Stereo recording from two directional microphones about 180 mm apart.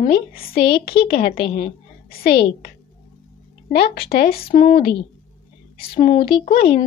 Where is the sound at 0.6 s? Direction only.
60° left (ahead or behind).